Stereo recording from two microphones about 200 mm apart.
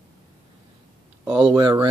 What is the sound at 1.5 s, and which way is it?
Speech, 20° right (ahead or behind).